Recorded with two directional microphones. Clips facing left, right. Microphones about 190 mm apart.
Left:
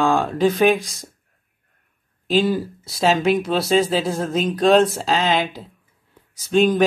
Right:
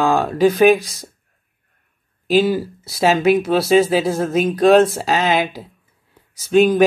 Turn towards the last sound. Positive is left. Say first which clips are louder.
# right 3 dB
turn(degrees=-5)  # may be behind; listen again after turning